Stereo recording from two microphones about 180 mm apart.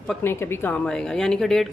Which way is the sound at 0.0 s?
10° left (ahead or behind).